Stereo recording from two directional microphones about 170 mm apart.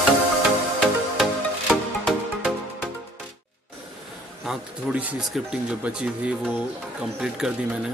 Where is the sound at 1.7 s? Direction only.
5° right (ahead or behind).